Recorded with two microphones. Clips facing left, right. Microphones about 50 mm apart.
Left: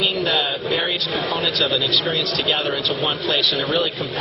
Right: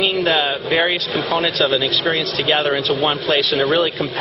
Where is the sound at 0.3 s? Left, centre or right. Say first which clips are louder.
Right 4 dB; right.